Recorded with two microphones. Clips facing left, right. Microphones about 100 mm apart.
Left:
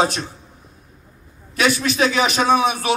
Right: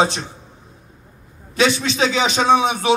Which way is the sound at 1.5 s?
25° right (ahead or behind).